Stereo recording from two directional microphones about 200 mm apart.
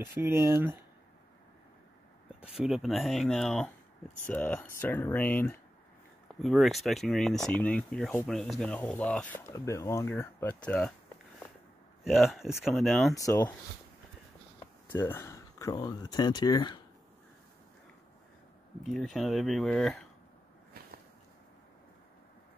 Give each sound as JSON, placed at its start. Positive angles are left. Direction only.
{"t": 0.0, "sound": "speech", "side_deg": -15}
{"t": 2.6, "sound": "speech", "side_deg": 0}
{"t": 12.0, "sound": "speech", "side_deg": 0}
{"t": 13.1, "sound": "speech", "side_deg": 15}
{"t": 14.9, "sound": "a sound", "side_deg": 10}
{"t": 15.7, "sound": "speech", "side_deg": 20}
{"t": 18.8, "sound": "speech", "side_deg": 0}